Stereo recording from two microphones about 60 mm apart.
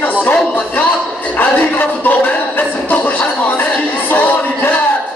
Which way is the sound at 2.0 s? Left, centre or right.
Left.